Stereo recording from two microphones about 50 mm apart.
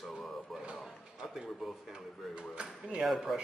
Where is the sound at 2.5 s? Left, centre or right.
Centre.